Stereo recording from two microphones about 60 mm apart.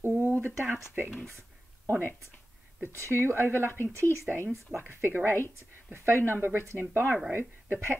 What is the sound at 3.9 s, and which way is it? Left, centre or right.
Speech, right.